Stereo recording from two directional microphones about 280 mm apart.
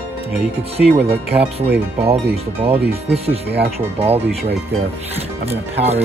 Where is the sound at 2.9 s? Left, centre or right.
Right.